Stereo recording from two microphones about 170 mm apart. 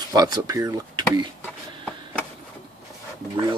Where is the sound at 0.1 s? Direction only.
25° right (ahead or behind).